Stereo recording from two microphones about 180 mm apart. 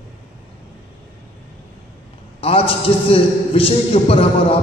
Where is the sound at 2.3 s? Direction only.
30° left (ahead or behind).